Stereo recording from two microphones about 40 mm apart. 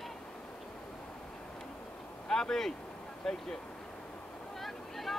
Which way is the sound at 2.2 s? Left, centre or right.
Centre.